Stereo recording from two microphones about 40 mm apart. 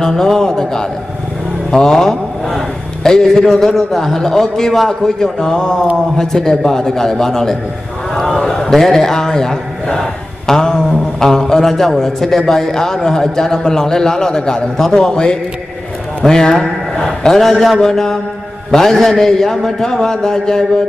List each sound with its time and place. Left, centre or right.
0.0 s a man's voice: centre